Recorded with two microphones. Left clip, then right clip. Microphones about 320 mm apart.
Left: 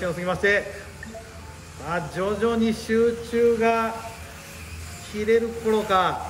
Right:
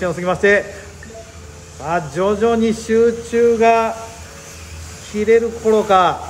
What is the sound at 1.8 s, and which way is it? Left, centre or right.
Speech, centre.